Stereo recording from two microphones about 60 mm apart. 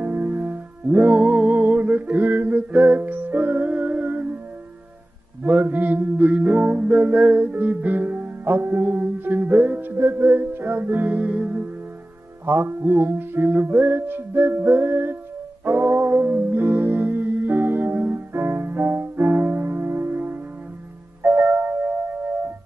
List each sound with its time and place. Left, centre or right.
0.0 s music: right
5.4 s mantra: right
7.2 s music: right
12.4 s music: right
21.4 s music: right